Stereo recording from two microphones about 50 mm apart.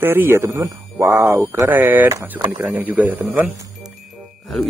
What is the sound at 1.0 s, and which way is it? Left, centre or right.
Speech, right.